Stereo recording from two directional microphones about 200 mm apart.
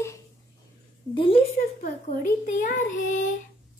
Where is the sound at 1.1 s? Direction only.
25° left (ahead or behind).